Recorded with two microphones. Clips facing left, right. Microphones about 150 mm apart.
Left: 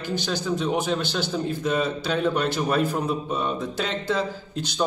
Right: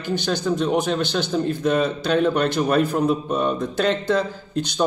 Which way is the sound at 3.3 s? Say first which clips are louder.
Right 5 dB; 55° right (ahead or behind).